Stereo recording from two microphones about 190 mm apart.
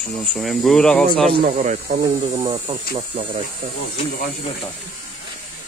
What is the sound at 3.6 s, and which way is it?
Speech, 45° right (ahead or behind).